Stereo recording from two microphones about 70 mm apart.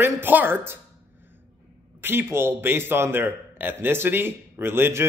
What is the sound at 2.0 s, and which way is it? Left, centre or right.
Speech, right.